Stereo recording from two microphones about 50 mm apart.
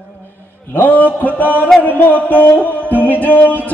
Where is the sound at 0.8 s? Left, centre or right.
Left.